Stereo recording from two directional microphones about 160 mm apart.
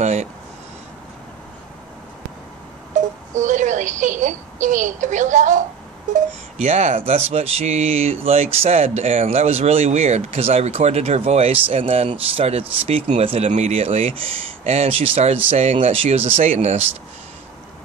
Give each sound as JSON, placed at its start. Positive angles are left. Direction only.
{"t": 0.0, "sound": "speech", "side_deg": -45}
{"t": 2.9, "sound": "wail", "side_deg": -50}
{"t": 3.3, "sound": "a woman's voice", "side_deg": -50}
{"t": 6.6, "sound": "speech", "side_deg": -45}